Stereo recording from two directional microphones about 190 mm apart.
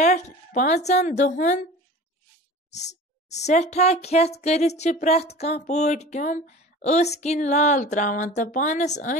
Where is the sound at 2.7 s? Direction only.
35° left (ahead or behind).